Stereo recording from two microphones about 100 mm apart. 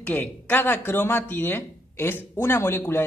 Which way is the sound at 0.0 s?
20° left (ahead or behind).